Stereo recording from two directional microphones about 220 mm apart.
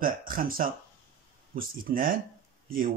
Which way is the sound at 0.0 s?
40° right (ahead or behind).